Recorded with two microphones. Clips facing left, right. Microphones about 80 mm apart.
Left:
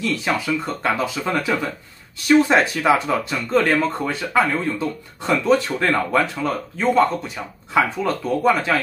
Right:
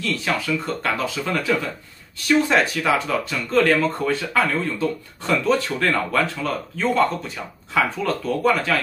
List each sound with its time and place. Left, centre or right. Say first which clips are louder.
0.0 s speech: left 2 dB; centre